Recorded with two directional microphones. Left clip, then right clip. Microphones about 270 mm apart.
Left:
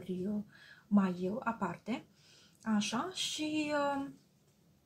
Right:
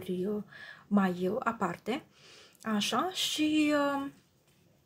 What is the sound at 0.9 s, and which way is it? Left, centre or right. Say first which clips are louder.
Speech: right 4 dB; right.